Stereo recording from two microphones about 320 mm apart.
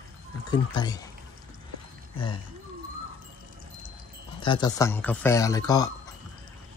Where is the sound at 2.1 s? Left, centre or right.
Centre.